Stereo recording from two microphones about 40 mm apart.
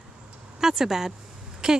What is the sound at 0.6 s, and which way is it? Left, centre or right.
A woman's voice, centre.